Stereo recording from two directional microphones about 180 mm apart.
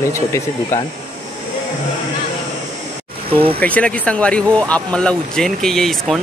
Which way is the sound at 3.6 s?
5° left (ahead or behind).